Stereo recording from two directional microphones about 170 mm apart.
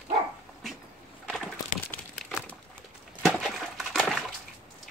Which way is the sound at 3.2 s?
Centre (ahead or behind).